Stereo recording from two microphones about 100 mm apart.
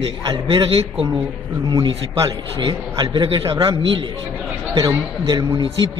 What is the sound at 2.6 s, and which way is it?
Speech, 50° right (ahead or behind).